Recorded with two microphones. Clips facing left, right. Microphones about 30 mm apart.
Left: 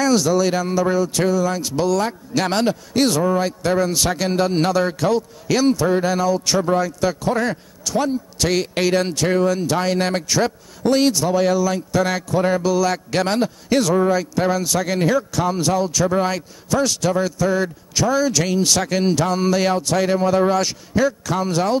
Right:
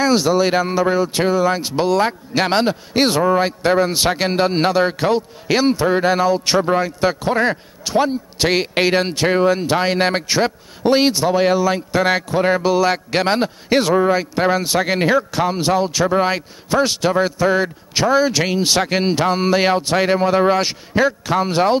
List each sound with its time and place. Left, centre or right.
0.0 s speech: right